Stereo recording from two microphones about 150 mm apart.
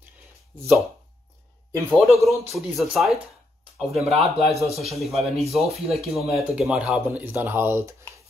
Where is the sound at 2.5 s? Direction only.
Centre (ahead or behind).